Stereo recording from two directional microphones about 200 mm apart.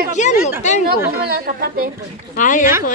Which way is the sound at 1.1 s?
50° right (ahead or behind).